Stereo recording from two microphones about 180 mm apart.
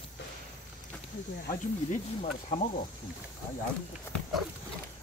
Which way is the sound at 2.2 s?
40° left (ahead or behind).